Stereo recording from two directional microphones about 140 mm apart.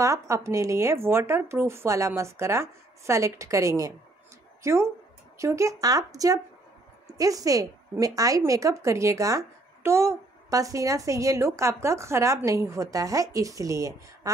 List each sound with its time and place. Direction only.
0.0 s a woman's voice: 20° right (ahead or behind)